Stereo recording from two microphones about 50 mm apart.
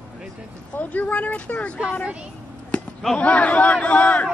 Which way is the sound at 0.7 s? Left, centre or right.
Left.